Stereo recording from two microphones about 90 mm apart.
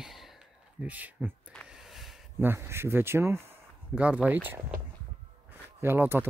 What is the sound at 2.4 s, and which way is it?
Speech, 25° right (ahead or behind).